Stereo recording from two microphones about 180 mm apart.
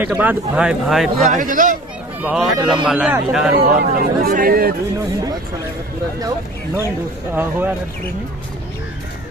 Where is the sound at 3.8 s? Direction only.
55° right (ahead or behind).